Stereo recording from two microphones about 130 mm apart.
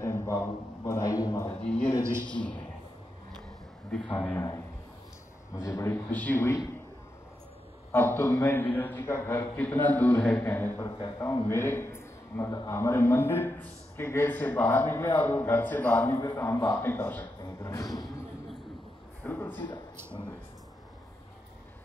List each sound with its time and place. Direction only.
0.0 s a sound: 25° left (ahead or behind)
0.8 s a man's voice: 25° left (ahead or behind)
2.2 s a man's voice: 5° left (ahead or behind)
4.2 s a man's voice: 15° left (ahead or behind)
5.5 s a man's voice: 25° left (ahead or behind)
7.9 s a man's voice: 15° left (ahead or behind)
10.8 s speech: 35° left (ahead or behind)
11.1 s a man's voice: 20° left (ahead or behind)
16.8 s a man's voice: 15° left (ahead or behind)
17.4 s speech: 30° left (ahead or behind)
19.2 s a man's voice: 15° left (ahead or behind)